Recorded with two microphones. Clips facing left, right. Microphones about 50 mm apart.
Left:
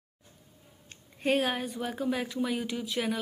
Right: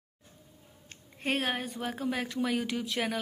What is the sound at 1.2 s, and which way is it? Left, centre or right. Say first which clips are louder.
Speech: left 3 dB; right.